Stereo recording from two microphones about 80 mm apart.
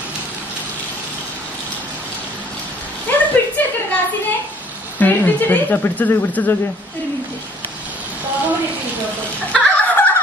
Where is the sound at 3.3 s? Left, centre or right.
Centre.